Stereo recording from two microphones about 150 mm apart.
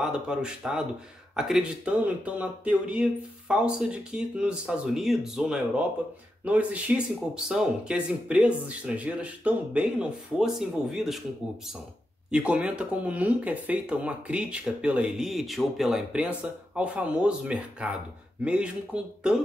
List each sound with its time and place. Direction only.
0.0 s speech: 5° right (ahead or behind)
12.3 s speech: 5° right (ahead or behind)